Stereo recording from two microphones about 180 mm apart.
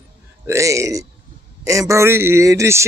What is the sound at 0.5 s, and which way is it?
Speech, 15° right (ahead or behind).